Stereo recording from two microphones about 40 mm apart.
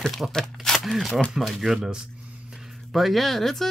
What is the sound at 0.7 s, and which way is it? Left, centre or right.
Speech, centre.